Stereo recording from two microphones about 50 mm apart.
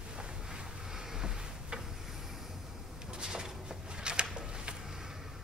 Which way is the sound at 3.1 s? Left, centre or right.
Centre.